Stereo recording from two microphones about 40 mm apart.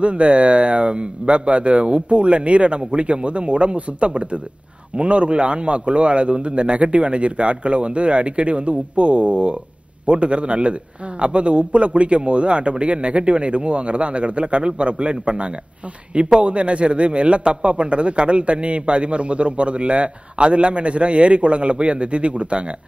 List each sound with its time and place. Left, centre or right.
0.0 s a man's voice: right